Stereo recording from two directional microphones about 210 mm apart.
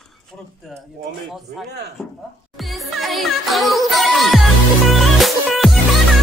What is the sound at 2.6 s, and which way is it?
Music, centre (ahead or behind).